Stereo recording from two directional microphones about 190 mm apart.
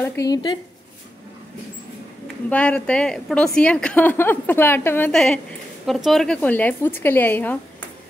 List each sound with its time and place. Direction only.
0.0 s speech: 15° left (ahead or behind)
2.5 s a woman's voice: 5° left (ahead or behind)